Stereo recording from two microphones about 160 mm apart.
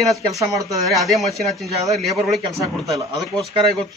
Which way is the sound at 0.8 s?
Centre (ahead or behind).